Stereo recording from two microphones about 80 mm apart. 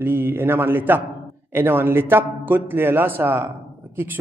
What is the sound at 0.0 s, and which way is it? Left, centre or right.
A man's voice, right.